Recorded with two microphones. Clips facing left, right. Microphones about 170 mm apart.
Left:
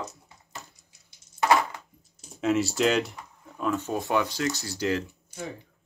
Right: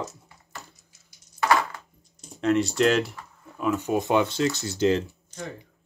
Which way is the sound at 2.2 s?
Centre (ahead or behind).